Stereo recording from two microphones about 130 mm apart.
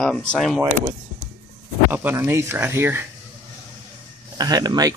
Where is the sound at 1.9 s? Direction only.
15° right (ahead or behind).